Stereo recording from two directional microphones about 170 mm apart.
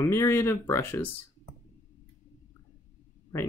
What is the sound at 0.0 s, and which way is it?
Speech, 15° left (ahead or behind).